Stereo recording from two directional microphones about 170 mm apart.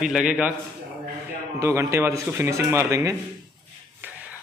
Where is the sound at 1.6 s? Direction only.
15° right (ahead or behind).